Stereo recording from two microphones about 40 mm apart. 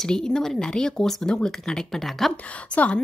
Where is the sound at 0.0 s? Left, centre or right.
Centre.